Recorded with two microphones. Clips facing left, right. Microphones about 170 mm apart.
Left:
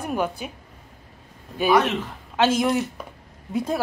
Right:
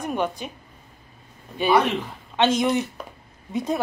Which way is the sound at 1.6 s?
5° left (ahead or behind).